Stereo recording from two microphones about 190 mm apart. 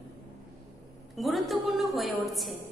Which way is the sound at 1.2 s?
Centre (ahead or behind).